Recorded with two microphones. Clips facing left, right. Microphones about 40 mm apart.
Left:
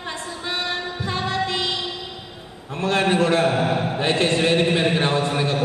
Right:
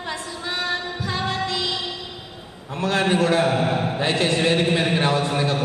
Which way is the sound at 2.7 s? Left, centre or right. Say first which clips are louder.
Left 1 dB; left.